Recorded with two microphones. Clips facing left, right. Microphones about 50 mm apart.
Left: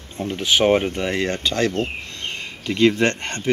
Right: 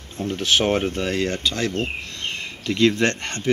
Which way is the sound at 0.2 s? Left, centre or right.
Centre.